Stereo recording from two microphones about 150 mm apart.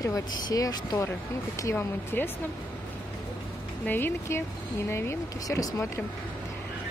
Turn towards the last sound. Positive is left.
turn(degrees=20)  # may be behind; listen again after turning